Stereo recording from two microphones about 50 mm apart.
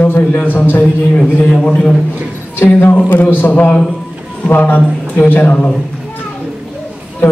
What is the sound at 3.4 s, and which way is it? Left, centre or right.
A man's voice, left.